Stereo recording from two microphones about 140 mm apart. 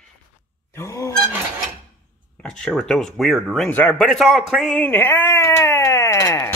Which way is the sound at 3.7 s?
10° left (ahead or behind).